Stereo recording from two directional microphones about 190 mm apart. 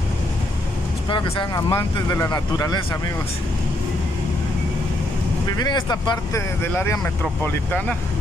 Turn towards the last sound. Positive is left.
turn(degrees=10)  # may be behind; listen again after turning